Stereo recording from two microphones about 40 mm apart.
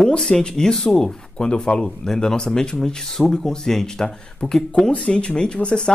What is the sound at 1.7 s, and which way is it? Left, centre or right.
Speech, left.